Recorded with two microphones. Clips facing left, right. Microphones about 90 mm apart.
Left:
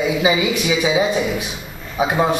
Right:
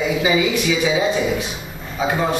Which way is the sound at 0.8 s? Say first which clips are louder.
Left 1 dB; 15° left (ahead or behind).